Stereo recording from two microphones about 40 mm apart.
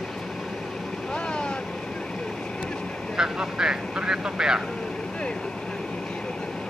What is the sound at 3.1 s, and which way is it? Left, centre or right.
Vehicle, centre.